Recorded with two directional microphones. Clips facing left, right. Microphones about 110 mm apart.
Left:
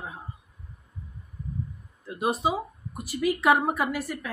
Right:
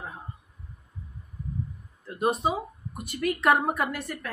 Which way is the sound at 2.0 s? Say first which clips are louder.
Even; centre (ahead or behind).